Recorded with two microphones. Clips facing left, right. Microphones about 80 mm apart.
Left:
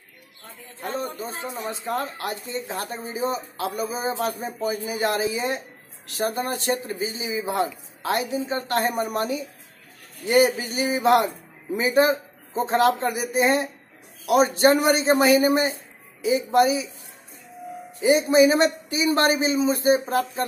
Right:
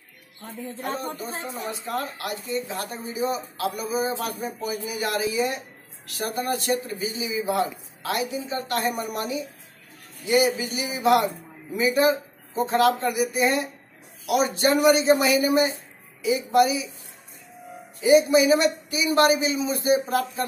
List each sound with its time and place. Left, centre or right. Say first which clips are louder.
1.6 s speech: left 3 dB; left
18.0 s speech: even; left